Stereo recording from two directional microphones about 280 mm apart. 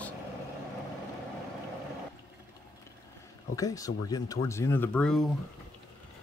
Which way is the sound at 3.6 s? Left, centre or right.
Centre.